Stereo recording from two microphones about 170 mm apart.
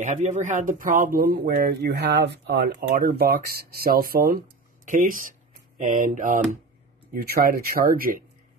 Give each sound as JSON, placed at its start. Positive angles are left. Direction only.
{"t": 0.0, "sound": "speech", "side_deg": -45}
{"t": 7.2, "sound": "speech", "side_deg": -60}